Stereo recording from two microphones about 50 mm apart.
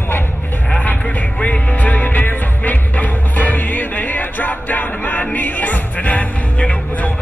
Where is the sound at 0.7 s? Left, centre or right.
Left.